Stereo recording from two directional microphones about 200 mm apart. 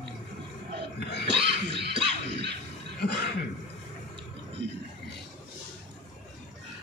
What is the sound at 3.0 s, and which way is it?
Cough, 55° left (ahead or behind).